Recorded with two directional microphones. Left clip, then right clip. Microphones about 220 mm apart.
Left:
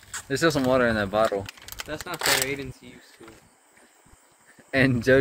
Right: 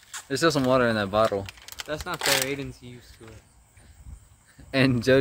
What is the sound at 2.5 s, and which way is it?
Speech, 25° right (ahead or behind).